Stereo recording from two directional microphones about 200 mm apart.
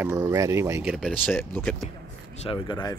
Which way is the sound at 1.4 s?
10° left (ahead or behind).